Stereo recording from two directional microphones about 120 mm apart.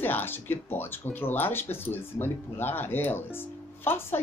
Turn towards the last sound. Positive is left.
turn(degrees=20)  # may be behind; listen again after turning